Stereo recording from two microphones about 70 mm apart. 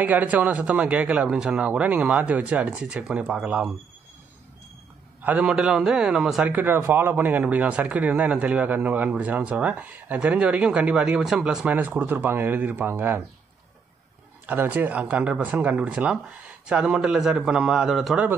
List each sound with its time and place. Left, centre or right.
0.0 s a man's voice: right
5.2 s speech: centre
6.4 s a man's voice: right; by 11.6 s centre
11.6 s a man's voice: right
14.4 s speech: right; by 18.1 s centre